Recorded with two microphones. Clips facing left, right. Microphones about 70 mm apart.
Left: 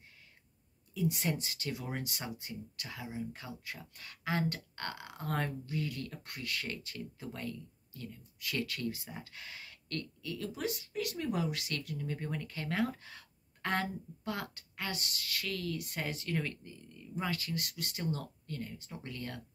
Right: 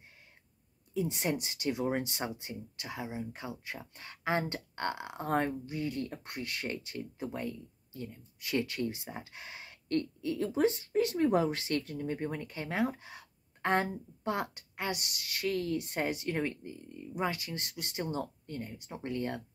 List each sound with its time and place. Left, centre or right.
0.9 s speech: right